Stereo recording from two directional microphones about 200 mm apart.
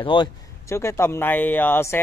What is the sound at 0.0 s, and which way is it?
A man's voice, 25° left (ahead or behind).